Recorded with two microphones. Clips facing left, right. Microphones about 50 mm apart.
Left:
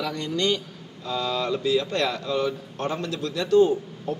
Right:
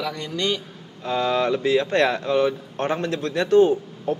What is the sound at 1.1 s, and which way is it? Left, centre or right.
Speech, right.